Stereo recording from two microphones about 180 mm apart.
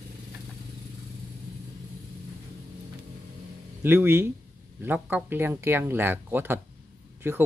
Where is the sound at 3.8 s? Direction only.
10° right (ahead or behind).